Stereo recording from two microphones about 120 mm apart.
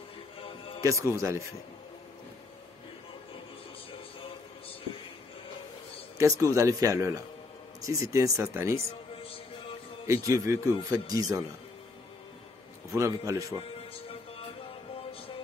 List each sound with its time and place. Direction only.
0.4 s music: 50° left (ahead or behind)
0.8 s speech: 25° right (ahead or behind)
4.2 s a sound: 50° left (ahead or behind)
6.1 s speech: 25° right (ahead or behind)
9.1 s music: 50° left (ahead or behind)
10.0 s speech: 25° right (ahead or behind)
12.9 s speech: 25° right (ahead or behind)
13.6 s music: 50° left (ahead or behind)